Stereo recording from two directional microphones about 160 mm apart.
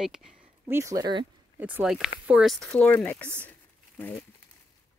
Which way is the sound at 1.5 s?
10° right (ahead or behind).